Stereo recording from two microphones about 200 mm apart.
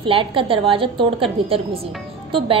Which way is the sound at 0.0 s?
25° right (ahead or behind).